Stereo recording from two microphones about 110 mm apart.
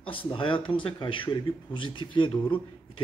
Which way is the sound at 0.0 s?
55° left (ahead or behind).